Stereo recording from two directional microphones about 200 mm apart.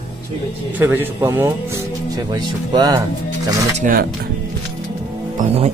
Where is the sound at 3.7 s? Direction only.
40° right (ahead or behind).